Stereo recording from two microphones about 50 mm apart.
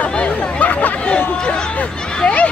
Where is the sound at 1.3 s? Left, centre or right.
Centre.